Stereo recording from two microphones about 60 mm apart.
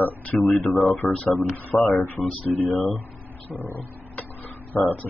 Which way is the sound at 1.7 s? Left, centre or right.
Left.